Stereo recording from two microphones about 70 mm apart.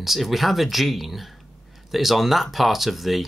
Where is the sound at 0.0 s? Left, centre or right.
Centre.